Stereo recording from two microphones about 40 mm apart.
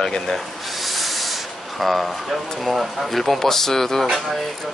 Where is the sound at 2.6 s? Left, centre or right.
Centre.